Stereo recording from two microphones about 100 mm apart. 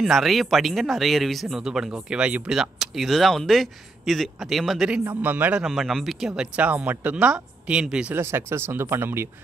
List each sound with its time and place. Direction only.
0.0 s speech: centre (ahead or behind)
5.0 s speech: 20° right (ahead or behind)
5.7 s speech: centre (ahead or behind)
6.5 s speech: 15° right (ahead or behind)
8.1 s speech: 25° right (ahead or behind)